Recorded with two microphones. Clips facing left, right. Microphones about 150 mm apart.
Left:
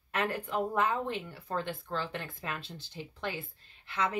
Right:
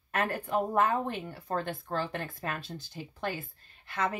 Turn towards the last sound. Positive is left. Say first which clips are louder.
# right 1 dB
turn(degrees=-45)  # may be behind; listen again after turning